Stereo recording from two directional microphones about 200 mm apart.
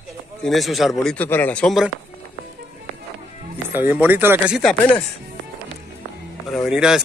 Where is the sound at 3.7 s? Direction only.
10° right (ahead or behind).